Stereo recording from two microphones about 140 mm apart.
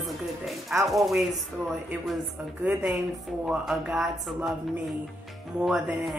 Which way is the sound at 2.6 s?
10° right (ahead or behind).